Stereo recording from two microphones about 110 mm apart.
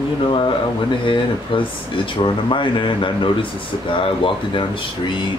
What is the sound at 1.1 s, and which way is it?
Speech, 50° left (ahead or behind).